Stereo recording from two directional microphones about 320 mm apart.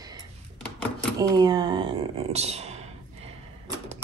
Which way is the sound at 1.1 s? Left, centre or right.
Centre.